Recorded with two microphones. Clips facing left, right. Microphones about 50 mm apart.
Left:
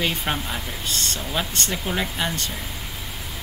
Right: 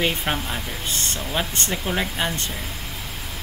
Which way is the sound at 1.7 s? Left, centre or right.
Centre.